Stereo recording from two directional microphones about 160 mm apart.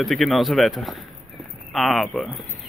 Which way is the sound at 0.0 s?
Centre (ahead or behind).